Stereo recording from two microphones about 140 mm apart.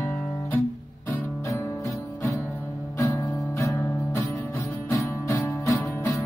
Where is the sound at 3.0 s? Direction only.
20° left (ahead or behind).